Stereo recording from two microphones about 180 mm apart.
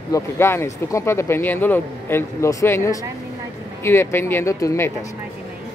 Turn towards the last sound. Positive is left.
turn(degrees=15)  # may be behind; listen again after turning